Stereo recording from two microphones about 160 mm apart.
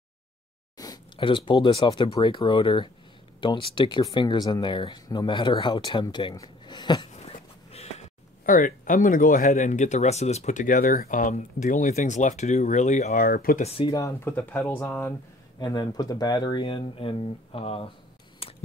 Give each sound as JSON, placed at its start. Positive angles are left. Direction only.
{"t": 0.7, "sound": "speech", "side_deg": 25}
{"t": 7.1, "sound": "a sound", "side_deg": 40}
{"t": 8.5, "sound": "speech", "side_deg": 55}
{"t": 13.6, "sound": "speech", "side_deg": 35}
{"t": 14.0, "sound": "speech", "side_deg": 15}
{"t": 15.6, "sound": "speech", "side_deg": 25}